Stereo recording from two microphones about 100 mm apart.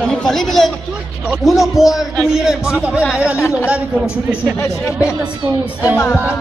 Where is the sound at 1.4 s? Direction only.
Centre (ahead or behind).